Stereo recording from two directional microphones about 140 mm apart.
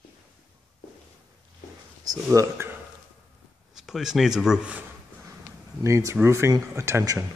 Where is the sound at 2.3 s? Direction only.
20° right (ahead or behind).